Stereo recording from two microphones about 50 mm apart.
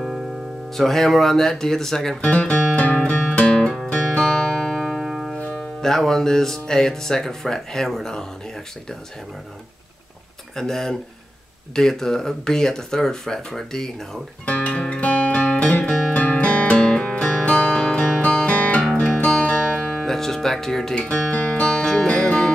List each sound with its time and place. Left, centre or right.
0.7 s speech: centre
2.2 s music: left
3.5 s music: centre
5.4 s music: left
5.8 s speech: centre
10.5 s speech: centre
14.4 s guitar: left
16.1 s music: left
19.1 s guitar: centre
21.0 s music: centre